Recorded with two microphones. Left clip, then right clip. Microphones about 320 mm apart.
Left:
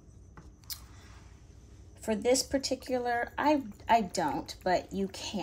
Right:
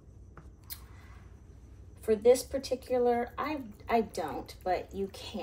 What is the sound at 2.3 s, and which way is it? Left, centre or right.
Speech, centre.